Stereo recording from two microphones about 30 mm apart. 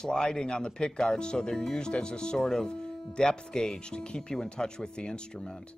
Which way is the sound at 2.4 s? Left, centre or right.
Centre.